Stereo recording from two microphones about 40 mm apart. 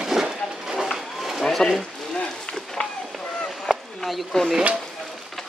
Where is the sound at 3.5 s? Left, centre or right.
Centre.